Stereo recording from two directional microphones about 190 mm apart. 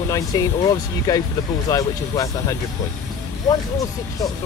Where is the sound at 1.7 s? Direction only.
15° left (ahead or behind).